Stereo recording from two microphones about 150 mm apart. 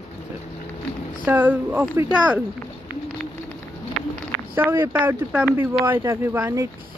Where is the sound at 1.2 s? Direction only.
10° right (ahead or behind).